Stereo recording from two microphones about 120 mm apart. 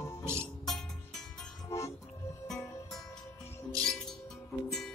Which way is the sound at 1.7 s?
25° left (ahead or behind).